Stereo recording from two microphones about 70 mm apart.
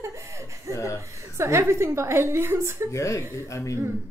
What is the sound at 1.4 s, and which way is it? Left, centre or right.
Speech, right.